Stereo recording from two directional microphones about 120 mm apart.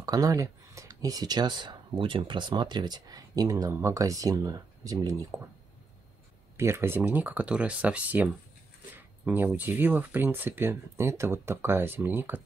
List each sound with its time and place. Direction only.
0.0 s speech: 30° right (ahead or behind)
6.5 s speech: 20° right (ahead or behind)
8.9 s a sound: 15° right (ahead or behind)
9.6 s speech: 15° right (ahead or behind)